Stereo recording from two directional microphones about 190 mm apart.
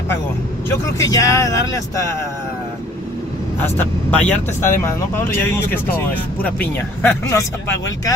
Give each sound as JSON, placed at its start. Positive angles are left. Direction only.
{"t": 0.7, "sound": "speech", "side_deg": 15}
{"t": 3.6, "sound": "speech", "side_deg": 10}